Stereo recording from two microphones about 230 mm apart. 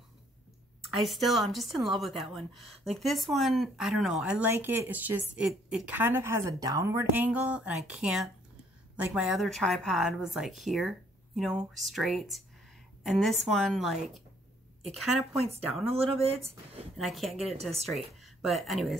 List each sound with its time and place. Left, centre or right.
0.9 s a woman's voice: centre
15.8 s speech: right
16.9 s speech: centre